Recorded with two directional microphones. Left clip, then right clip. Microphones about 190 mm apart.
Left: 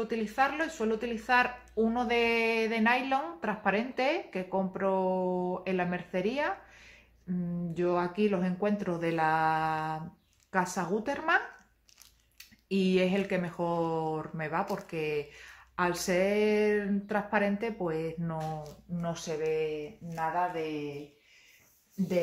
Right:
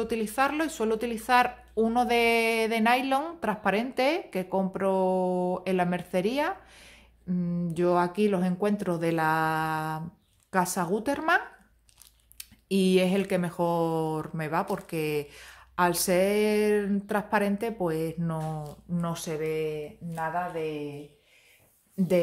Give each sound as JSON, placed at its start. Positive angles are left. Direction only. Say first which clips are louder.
{"t": 0.0, "sound": "speech", "louder": "right 2 dB", "side_deg": -40}
{"t": 18.9, "sound": "speech", "louder": "right 2 dB", "side_deg": -65}